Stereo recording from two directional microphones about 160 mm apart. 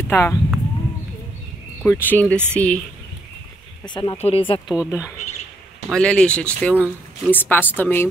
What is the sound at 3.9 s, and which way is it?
Speech, 30° left (ahead or behind).